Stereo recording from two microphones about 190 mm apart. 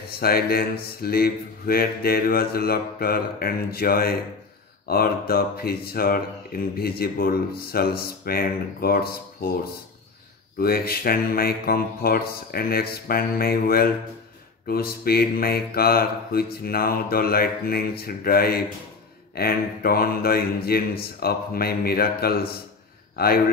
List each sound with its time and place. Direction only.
0.1 s speech: 55° left (ahead or behind)
10.6 s a man's voice: 55° left (ahead or behind)